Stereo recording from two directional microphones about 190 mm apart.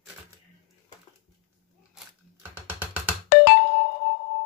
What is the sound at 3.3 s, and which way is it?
Music, 60° left (ahead or behind).